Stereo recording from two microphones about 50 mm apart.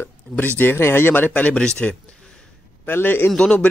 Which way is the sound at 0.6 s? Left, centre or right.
Left.